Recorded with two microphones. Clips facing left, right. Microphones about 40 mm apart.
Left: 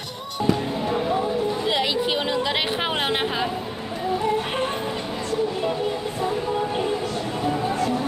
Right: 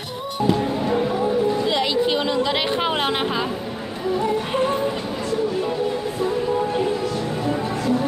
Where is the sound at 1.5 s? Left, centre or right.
Centre.